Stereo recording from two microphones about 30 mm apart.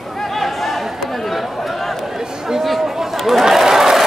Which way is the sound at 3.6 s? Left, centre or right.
Centre.